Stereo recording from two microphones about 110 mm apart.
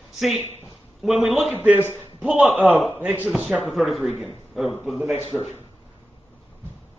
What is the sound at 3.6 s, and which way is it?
Speech, centre (ahead or behind).